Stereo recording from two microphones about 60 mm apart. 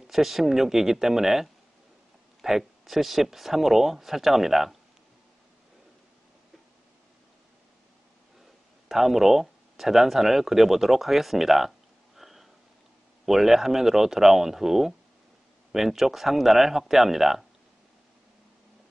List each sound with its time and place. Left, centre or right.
0.0 s speech: centre
8.8 s speech: centre
12.2 s sniff: centre
13.2 s speech: centre